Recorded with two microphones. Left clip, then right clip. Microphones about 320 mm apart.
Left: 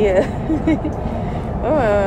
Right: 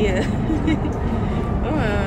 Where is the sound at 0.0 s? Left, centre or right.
Centre.